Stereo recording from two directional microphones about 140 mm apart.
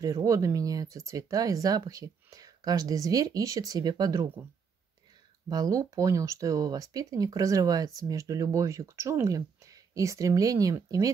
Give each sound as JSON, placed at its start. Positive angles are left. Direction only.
{"t": 0.0, "sound": "speech", "side_deg": -25}
{"t": 5.5, "sound": "speech", "side_deg": -25}